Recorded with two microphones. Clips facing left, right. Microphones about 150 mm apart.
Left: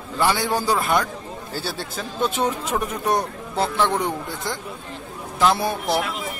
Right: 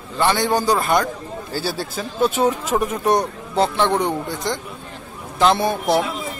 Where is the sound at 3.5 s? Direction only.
25° right (ahead or behind).